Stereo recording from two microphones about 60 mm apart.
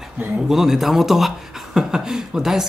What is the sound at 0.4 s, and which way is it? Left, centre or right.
Speech, centre.